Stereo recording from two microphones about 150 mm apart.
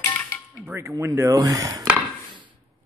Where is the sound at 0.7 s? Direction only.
15° right (ahead or behind).